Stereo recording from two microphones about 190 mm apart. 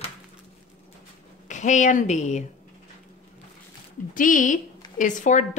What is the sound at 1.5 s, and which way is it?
Speech, 40° left (ahead or behind).